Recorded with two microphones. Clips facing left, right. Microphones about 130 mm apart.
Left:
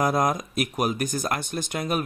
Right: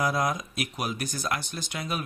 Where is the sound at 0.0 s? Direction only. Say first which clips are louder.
Left 4 dB; 50° left (ahead or behind).